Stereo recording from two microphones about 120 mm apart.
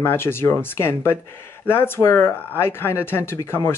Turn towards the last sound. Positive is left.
turn(degrees=20)  # may be behind; listen again after turning